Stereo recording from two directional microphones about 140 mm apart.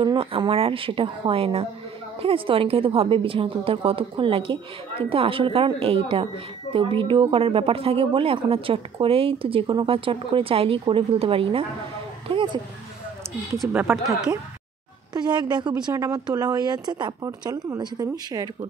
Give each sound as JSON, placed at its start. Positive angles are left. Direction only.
{"t": 0.0, "sound": "speech", "side_deg": -35}
{"t": 12.3, "sound": "a sound", "side_deg": -35}
{"t": 13.6, "sound": "speech", "side_deg": -10}
{"t": 15.1, "sound": "speech", "side_deg": -30}